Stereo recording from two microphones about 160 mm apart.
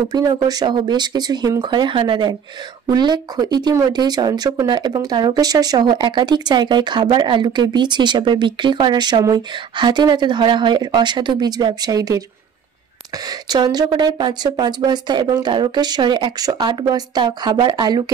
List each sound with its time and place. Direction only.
0.1 s speech: 25° right (ahead or behind)
13.3 s speech: 25° right (ahead or behind)